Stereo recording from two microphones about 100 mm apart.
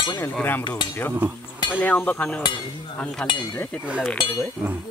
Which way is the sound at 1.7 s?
15° left (ahead or behind).